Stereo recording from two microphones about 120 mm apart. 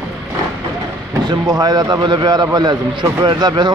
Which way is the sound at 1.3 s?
35° right (ahead or behind).